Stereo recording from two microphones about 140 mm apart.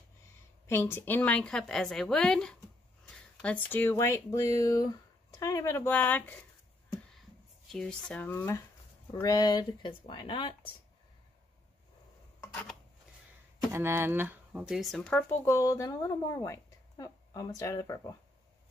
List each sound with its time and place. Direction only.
0.7 s a woman's voice: 15° left (ahead or behind)
7.7 s speech: 5° left (ahead or behind)
9.1 s speech: 25° left (ahead or behind)
13.7 s speech: 15° right (ahead or behind); by 15.2 s 5° left (ahead or behind)
15.4 s a woman's voice: 20° left (ahead or behind)